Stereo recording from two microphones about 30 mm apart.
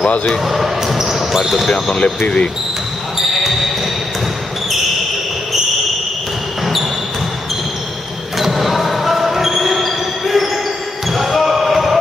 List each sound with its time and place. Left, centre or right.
0.5 s basketball bounce: centre
2.1 s speech: left
8.4 s basketball bounce: centre